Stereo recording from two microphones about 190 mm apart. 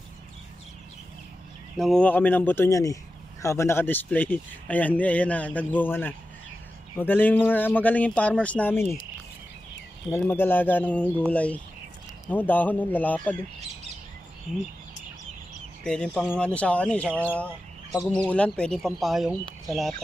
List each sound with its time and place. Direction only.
1.8 s speech: 5° left (ahead or behind)
10.1 s speech: 10° left (ahead or behind)
15.8 s speech: 5° left (ahead or behind)